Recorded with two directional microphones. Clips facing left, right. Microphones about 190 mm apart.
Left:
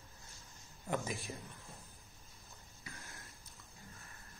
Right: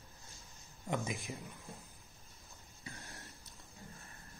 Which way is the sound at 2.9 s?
35° right (ahead or behind).